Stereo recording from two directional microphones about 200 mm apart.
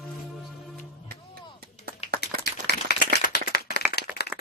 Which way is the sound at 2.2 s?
55° left (ahead or behind).